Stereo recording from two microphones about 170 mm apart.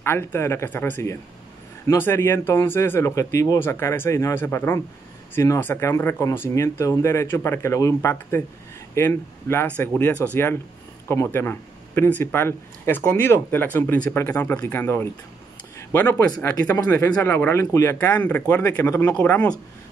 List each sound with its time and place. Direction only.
0.0 s speech: 15° left (ahead or behind)